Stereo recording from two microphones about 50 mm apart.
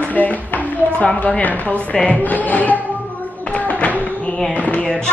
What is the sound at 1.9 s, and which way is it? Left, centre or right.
Speech, left.